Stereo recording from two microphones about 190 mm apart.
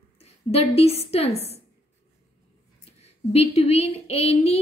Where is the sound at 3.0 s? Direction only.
35° left (ahead or behind).